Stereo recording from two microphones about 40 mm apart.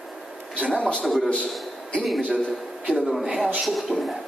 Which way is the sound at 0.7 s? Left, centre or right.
Left.